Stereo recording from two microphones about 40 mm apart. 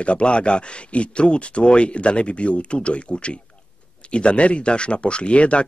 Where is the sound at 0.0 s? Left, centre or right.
Left.